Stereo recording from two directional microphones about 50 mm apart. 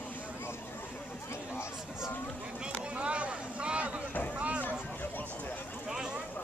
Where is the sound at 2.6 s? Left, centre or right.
Right.